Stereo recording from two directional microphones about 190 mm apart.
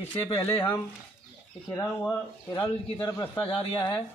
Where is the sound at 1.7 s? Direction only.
10° left (ahead or behind).